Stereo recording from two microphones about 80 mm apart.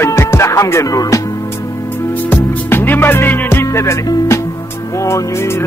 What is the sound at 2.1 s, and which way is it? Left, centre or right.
Music, left.